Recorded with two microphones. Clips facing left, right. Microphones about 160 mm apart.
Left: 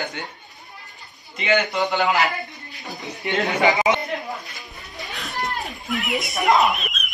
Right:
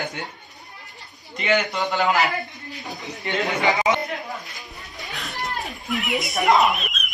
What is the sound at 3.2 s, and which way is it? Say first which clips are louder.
Speech: left 3 dB; 20° left (ahead or behind).